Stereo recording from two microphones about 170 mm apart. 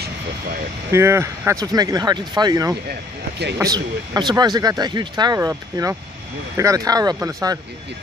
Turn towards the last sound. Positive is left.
turn(degrees=-20)  # may be behind; listen again after turning